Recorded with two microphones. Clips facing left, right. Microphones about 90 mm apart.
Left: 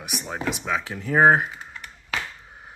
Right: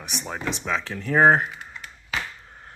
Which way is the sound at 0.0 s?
5° left (ahead or behind).